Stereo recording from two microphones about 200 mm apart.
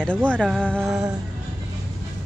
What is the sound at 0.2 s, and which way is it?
Speech, 5° left (ahead or behind).